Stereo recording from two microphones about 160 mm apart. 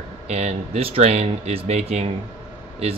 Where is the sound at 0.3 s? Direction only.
40° right (ahead or behind).